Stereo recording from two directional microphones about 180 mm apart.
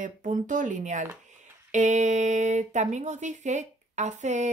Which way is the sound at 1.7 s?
40° right (ahead or behind).